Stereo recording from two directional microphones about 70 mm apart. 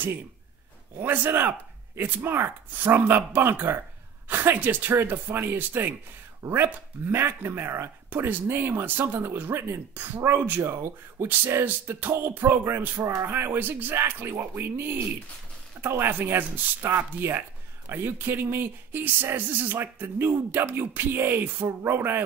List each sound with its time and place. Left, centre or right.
1.0 s speech: right
13.0 s speech: right
13.3 s speech: right